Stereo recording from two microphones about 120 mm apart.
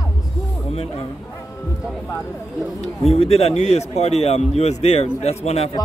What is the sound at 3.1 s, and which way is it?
Speech, 60° left (ahead or behind).